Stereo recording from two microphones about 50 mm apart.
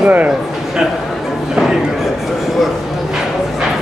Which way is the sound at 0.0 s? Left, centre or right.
Right.